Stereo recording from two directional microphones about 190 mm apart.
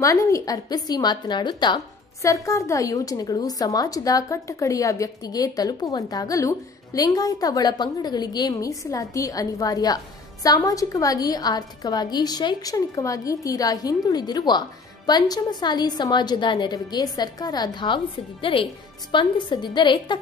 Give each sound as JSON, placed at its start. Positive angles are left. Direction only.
{"t": 0.0, "sound": "a woman's voice", "side_deg": 15}